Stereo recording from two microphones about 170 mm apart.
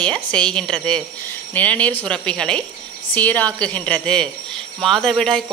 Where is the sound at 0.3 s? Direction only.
5° left (ahead or behind).